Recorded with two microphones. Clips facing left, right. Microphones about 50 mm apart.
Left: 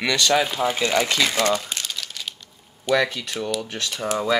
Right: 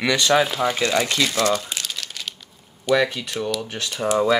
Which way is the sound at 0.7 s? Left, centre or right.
Left.